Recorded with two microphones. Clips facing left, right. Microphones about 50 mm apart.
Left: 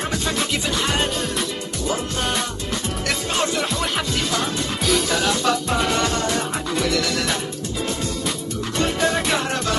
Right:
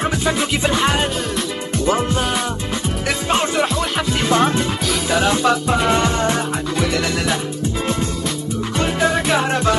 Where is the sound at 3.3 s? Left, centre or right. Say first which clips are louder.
Right 6 dB; right.